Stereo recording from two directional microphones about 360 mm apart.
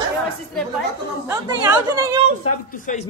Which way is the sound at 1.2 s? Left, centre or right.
Centre.